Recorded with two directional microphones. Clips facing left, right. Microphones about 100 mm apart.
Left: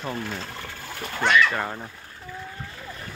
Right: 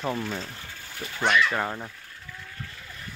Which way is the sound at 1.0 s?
75° left (ahead or behind).